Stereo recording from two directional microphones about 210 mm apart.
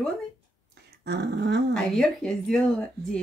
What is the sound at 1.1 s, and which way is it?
Dog, 50° right (ahead or behind).